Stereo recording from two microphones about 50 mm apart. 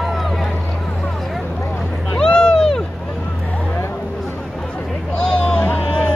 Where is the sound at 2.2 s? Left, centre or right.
Centre.